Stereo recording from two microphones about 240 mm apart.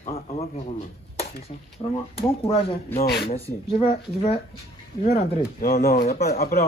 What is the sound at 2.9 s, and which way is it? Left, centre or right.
Speech, left.